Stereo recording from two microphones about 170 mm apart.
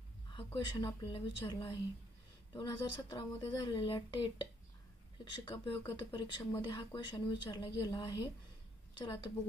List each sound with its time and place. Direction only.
0.7 s speech: 25° left (ahead or behind)